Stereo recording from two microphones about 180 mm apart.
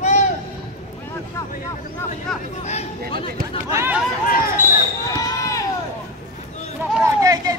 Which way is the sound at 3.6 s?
15° right (ahead or behind).